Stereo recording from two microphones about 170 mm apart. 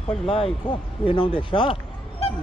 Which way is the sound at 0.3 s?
35° left (ahead or behind).